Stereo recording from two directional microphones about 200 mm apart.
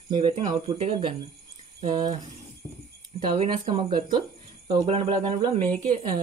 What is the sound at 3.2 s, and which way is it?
Speech, 25° right (ahead or behind).